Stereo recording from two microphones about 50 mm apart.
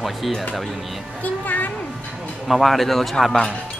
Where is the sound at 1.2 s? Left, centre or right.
Left.